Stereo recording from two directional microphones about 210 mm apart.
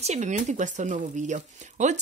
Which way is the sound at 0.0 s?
35° right (ahead or behind).